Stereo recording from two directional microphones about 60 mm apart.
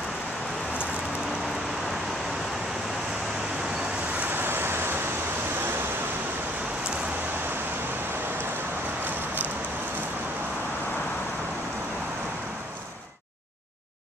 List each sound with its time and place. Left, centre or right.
4.3 s vehicle: right